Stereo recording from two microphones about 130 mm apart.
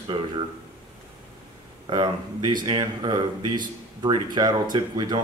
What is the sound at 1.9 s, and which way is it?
Speech, 35° right (ahead or behind).